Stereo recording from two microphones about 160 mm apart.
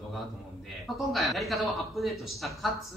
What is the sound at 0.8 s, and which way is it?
A man's voice, centre (ahead or behind).